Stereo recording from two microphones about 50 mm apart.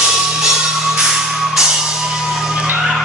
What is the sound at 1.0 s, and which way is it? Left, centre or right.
Music, centre.